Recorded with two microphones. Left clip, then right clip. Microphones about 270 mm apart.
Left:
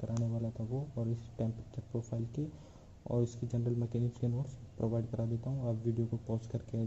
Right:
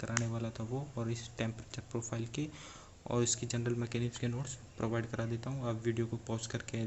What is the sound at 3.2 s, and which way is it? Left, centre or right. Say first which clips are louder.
Speech: right 4 dB; centre.